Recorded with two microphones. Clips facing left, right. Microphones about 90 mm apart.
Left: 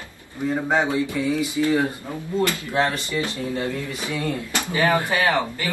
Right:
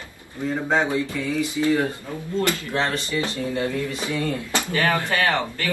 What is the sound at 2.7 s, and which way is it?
A man's voice, 10° left (ahead or behind).